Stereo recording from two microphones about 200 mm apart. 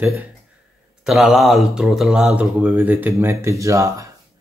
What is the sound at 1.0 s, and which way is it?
Speech, centre (ahead or behind).